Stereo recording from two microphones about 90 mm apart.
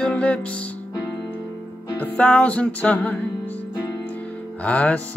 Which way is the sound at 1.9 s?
15° left (ahead or behind).